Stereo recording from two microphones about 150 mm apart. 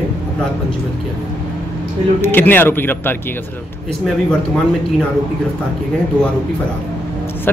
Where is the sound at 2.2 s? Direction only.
15° left (ahead or behind).